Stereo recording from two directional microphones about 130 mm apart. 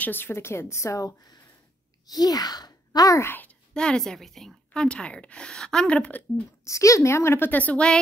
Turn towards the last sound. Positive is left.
turn(degrees=10)  # may be behind; listen again after turning